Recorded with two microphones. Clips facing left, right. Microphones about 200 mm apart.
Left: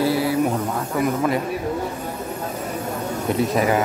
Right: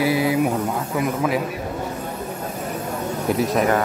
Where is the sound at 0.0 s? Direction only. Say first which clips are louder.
Right 1 dB; 15° right (ahead or behind).